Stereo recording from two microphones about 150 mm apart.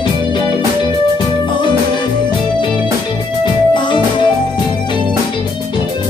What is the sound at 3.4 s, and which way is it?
Music, 30° left (ahead or behind).